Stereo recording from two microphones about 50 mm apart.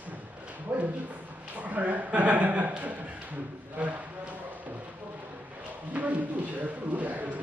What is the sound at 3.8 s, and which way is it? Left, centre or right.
Speech, right.